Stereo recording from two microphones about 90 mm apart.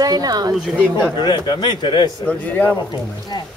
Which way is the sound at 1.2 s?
55° left (ahead or behind).